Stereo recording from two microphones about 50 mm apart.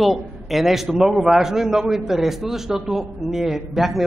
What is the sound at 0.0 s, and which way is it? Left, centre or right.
A man's voice, centre.